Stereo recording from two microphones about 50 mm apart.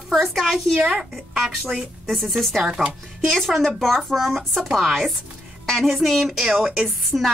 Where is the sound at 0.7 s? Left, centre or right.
Centre.